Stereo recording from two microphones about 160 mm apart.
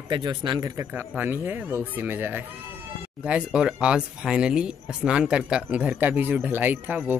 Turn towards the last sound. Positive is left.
turn(degrees=-10)  # may be behind; listen again after turning